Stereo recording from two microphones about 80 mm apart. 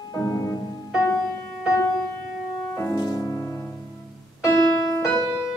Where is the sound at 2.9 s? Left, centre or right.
Left.